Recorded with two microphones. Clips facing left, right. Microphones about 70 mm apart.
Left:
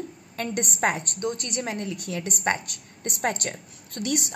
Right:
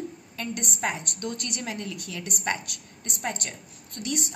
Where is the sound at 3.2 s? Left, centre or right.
Left.